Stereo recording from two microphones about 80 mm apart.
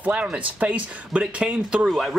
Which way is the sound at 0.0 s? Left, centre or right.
Centre.